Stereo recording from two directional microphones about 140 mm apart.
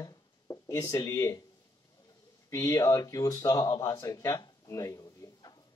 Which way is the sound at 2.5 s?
20° left (ahead or behind).